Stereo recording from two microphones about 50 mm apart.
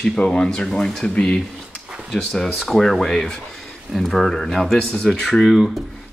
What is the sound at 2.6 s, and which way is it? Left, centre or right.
Speech, centre.